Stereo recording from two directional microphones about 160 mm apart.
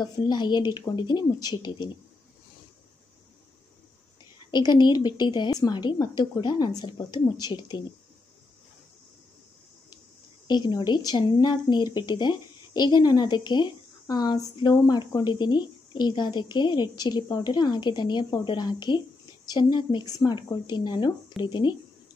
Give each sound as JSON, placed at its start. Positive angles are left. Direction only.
{"t": 0.0, "sound": "speech", "side_deg": 25}
{"t": 4.5, "sound": "speech", "side_deg": 25}
{"t": 10.5, "sound": "speech", "side_deg": 25}